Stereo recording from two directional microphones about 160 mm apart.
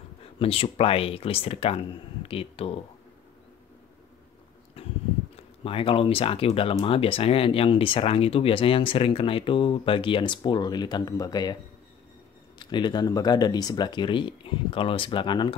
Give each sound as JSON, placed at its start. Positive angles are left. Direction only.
{"t": 0.4, "sound": "speech", "side_deg": 35}
{"t": 5.3, "sound": "speech", "side_deg": 35}
{"t": 12.5, "sound": "speech", "side_deg": 30}